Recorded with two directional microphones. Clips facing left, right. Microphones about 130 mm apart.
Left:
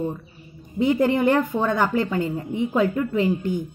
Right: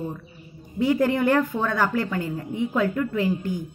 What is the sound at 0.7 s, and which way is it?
A woman's voice, 20° left (ahead or behind).